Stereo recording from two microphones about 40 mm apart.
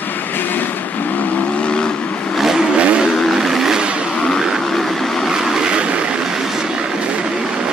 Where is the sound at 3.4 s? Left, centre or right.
Centre.